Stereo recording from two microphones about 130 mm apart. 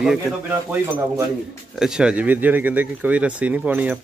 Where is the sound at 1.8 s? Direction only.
5° right (ahead or behind).